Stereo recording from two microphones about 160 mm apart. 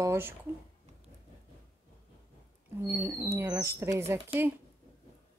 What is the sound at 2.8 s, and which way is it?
Speech, 15° right (ahead or behind).